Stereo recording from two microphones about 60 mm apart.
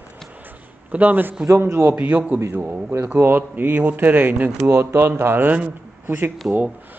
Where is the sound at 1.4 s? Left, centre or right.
Right.